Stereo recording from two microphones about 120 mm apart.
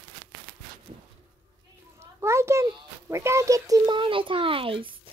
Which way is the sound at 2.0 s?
20° right (ahead or behind).